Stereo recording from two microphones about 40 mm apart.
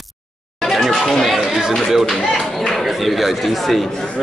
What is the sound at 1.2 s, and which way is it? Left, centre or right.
Chatter, centre.